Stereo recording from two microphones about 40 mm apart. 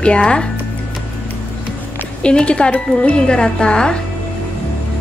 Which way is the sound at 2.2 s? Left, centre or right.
Left.